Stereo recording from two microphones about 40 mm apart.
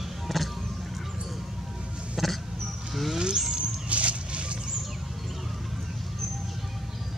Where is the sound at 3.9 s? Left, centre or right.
Right.